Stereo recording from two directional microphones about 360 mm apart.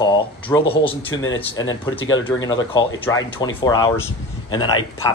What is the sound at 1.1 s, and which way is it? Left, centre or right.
Speech, left.